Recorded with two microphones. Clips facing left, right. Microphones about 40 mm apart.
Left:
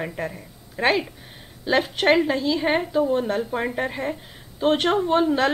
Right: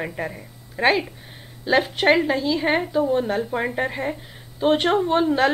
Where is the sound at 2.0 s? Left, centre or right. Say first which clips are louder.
Right 1 dB; centre.